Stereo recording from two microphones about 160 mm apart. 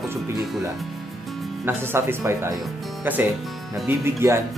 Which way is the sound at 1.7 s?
15° right (ahead or behind).